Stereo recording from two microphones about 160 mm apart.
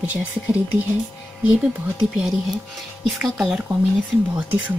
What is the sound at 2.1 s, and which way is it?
Speech, 5° right (ahead or behind).